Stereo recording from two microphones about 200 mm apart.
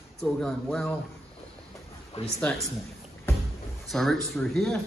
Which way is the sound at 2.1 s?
30° left (ahead or behind).